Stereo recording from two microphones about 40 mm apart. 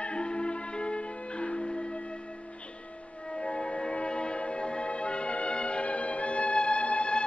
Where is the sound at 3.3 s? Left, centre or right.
Left.